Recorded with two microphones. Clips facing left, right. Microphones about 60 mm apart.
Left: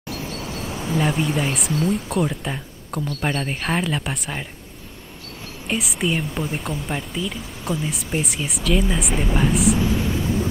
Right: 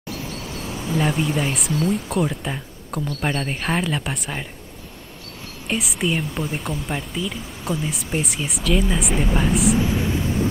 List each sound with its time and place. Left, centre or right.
0.4 s insect: left
0.9 s speech: centre
5.7 s speech: centre
9.8 s a sound: right